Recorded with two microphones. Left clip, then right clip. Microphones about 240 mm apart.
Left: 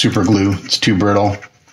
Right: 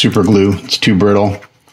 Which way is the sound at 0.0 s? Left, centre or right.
Right.